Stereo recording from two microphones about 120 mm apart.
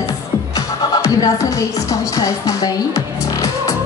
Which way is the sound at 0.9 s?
30° left (ahead or behind).